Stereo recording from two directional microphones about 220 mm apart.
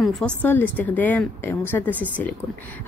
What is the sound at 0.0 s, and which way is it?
A woman's voice, centre (ahead or behind).